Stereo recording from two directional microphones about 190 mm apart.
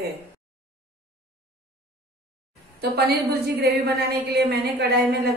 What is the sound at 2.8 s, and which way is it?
A woman's voice, 60° right (ahead or behind).